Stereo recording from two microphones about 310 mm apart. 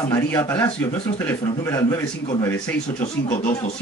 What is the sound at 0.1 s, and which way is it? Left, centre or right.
Speech, centre.